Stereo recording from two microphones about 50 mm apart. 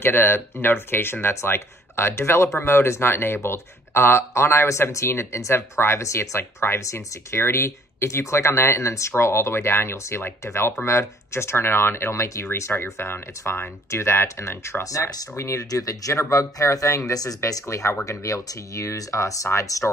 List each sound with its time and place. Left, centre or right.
0.0 s speech: left
1.3 s speech: left